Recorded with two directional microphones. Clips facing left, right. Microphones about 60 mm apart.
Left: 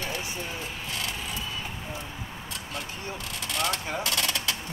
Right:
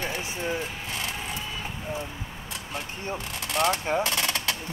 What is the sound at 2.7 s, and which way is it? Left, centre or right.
Speech, right.